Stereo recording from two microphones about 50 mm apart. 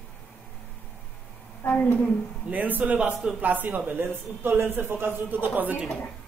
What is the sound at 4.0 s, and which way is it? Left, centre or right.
A man's voice, right.